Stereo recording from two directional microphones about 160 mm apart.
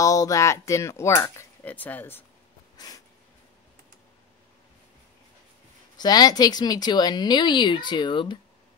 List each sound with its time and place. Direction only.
0.0 s speech: 20° left (ahead or behind)
5.9 s speech: 25° left (ahead or behind)